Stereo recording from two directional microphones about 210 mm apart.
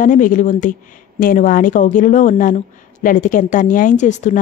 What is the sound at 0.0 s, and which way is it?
Speech, 40° left (ahead or behind).